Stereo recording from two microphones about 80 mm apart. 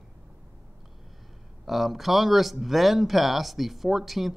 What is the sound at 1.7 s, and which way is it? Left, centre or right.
Speech, centre.